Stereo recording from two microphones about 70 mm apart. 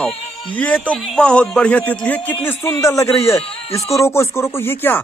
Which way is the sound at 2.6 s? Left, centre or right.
Left.